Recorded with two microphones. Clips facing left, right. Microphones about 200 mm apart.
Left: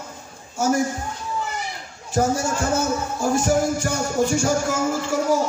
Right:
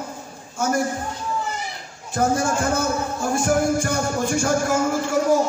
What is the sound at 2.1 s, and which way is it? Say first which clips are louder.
Speech: even; 55° right (ahead or behind).